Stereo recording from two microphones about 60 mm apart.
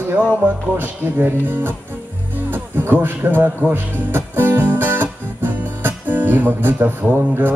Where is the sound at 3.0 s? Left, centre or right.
Right.